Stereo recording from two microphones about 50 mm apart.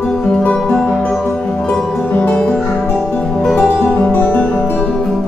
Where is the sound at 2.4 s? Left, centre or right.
Centre.